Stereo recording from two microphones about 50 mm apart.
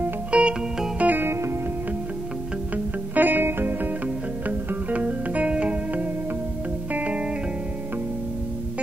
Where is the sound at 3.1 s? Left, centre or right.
Right.